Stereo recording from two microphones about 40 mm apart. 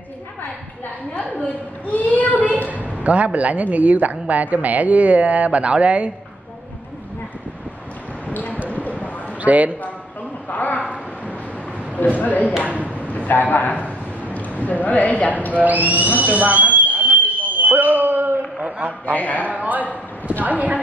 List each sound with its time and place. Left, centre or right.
1.1 s a sound: left
2.7 s speech: right
8.3 s basketball bounce: left
9.4 s a man's voice: right
10.5 s a man's voice: left
12.0 s a man's voice: left
15.5 s speech: right
17.2 s a sound: right
18.6 s a sound: right
19.0 s a man's voice: left
19.5 s a man's voice: right